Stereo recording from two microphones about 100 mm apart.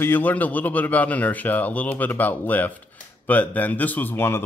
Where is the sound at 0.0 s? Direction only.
20° left (ahead or behind).